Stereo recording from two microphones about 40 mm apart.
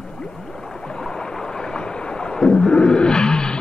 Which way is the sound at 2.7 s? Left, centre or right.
Left.